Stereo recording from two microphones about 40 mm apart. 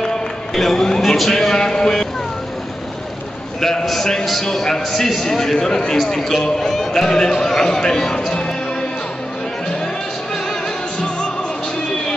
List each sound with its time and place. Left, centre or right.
0.6 s a man's voice: centre
3.8 s a man's voice: centre